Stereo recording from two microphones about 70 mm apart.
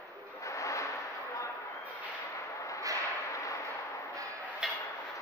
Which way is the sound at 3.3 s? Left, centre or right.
Left.